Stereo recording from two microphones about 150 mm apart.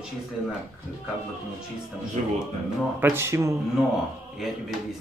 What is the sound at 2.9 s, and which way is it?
Speech, 15° right (ahead or behind).